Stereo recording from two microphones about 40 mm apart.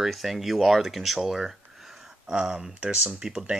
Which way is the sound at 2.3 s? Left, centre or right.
Right.